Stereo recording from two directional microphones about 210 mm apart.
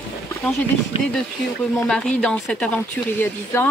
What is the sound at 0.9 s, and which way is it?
Speech, 25° left (ahead or behind).